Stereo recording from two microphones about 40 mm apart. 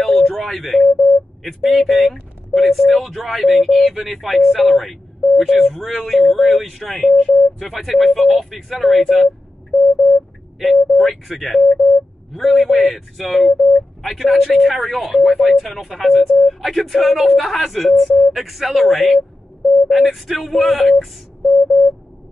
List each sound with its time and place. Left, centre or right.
0.0 s a sound: centre
0.6 s speech: centre
5.2 s a sound: centre
5.5 s speech: centre
9.1 s sidetone: centre
10.6 s speech: centre
17.7 s speech: centre